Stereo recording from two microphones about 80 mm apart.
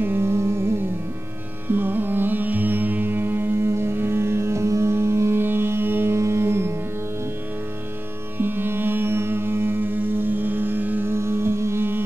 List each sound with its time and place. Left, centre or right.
0.0 s carnatic music: right
1.7 s music: right
8.4 s music: right